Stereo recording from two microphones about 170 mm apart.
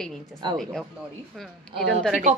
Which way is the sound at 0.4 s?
25° right (ahead or behind).